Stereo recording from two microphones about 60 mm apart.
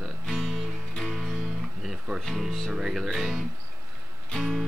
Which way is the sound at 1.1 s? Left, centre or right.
Centre.